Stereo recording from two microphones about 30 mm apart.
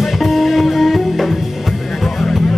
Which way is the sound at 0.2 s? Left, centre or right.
Centre.